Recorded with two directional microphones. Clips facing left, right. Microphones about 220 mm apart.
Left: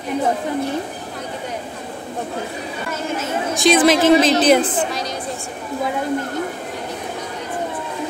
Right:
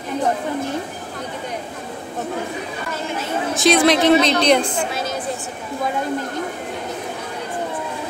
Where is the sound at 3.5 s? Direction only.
Centre (ahead or behind).